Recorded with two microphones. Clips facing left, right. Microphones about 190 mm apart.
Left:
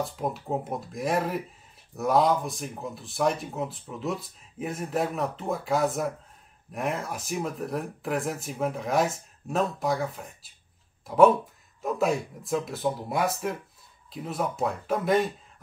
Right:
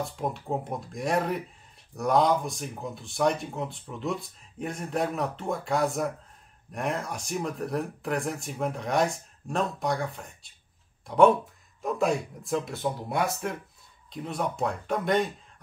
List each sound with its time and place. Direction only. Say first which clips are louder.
0.0 s speech: left 1 dB; centre (ahead or behind)